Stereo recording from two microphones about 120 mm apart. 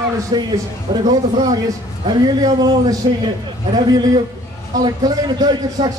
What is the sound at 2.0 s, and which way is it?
Speech, 35° right (ahead or behind).